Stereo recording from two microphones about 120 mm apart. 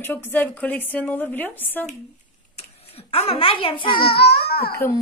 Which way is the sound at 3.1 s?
55° left (ahead or behind).